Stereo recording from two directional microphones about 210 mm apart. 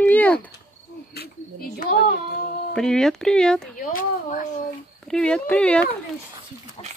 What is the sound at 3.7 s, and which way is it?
Speech, 40° left (ahead or behind).